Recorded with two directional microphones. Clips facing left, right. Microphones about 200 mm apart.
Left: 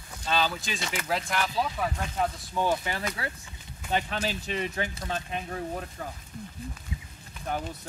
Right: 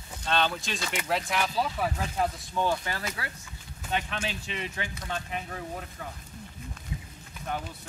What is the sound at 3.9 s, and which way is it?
Speech, 35° left (ahead or behind).